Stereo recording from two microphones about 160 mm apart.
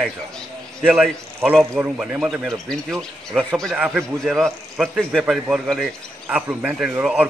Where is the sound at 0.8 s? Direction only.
5° right (ahead or behind).